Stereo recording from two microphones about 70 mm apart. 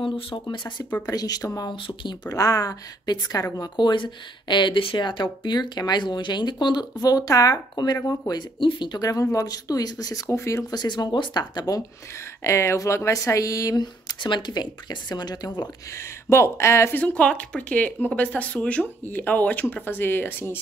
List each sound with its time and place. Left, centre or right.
0.5 s speech: left
1.0 s speech: left
3.1 s speech: left
3.5 s speech: left
4.5 s speech: left
8.3 s speech: left
9.2 s speech: left
10.2 s speech: left
10.7 s speech: left
12.4 s speech: left
14.0 s speech: left
16.3 s speech: left
16.9 s speech: left